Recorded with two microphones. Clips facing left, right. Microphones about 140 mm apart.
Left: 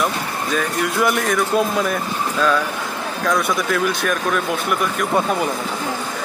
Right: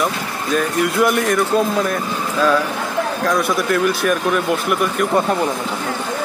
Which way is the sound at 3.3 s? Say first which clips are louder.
Even; centre (ahead or behind).